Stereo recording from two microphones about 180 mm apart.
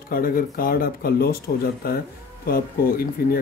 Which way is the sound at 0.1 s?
55° left (ahead or behind).